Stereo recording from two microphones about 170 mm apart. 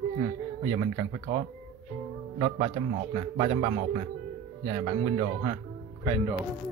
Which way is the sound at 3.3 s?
30° right (ahead or behind).